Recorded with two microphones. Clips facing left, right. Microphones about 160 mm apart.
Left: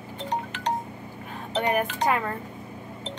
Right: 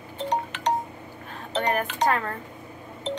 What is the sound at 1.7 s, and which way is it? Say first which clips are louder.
Speech: even; 10° left (ahead or behind).